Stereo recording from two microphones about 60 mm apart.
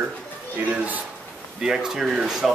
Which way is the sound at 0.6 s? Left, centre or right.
Right.